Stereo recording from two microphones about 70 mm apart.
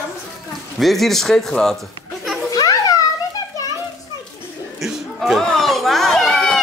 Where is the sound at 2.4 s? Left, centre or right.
Left.